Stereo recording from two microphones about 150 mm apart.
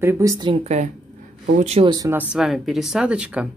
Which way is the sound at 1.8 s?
25° right (ahead or behind).